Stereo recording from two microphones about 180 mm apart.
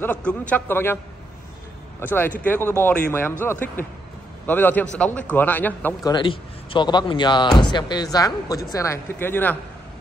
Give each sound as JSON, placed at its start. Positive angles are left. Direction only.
{"t": 0.0, "sound": "a man's voice", "side_deg": 5}
{"t": 2.0, "sound": "a man's voice", "side_deg": 10}
{"t": 6.0, "sound": "a man's voice", "side_deg": 25}